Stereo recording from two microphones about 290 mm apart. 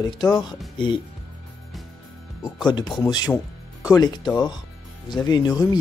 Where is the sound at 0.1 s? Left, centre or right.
Centre.